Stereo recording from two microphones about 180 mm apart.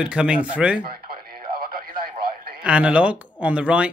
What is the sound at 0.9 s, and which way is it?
Radio, 60° right (ahead or behind).